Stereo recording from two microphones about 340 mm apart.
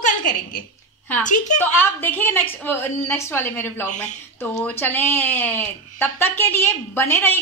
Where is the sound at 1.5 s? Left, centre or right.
Centre.